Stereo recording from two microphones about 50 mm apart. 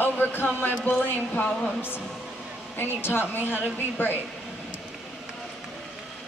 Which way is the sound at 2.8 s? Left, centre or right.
Left.